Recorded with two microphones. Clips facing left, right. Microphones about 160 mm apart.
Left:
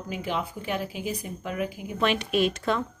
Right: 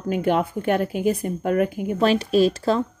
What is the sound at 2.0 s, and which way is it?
Speech, 35° right (ahead or behind).